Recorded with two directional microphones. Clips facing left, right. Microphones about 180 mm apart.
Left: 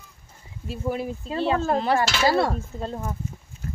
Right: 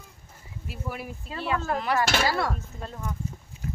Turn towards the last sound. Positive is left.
turn(degrees=35)  # may be behind; listen again after turning